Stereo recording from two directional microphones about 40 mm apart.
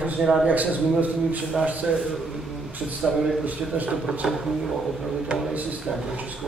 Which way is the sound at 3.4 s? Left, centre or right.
Right.